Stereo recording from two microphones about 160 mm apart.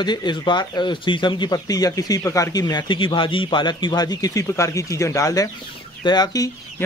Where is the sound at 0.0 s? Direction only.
25° left (ahead or behind).